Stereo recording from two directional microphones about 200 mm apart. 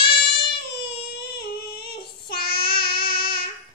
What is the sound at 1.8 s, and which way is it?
Child singing, 50° left (ahead or behind).